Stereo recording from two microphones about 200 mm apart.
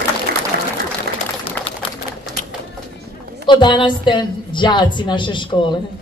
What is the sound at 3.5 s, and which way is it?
A woman's voice, 25° left (ahead or behind).